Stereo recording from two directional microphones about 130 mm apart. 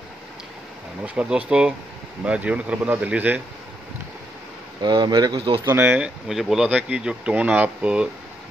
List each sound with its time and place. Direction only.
1.0 s speech: 10° right (ahead or behind)
4.8 s speech: 35° right (ahead or behind)
5.7 s speech: 15° right (ahead or behind)